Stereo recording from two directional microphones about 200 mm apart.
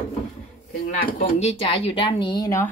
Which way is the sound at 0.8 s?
35° left (ahead or behind).